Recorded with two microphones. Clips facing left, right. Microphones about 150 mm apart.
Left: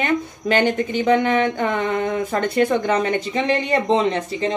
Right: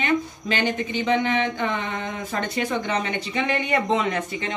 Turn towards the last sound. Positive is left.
turn(degrees=30)  # may be behind; listen again after turning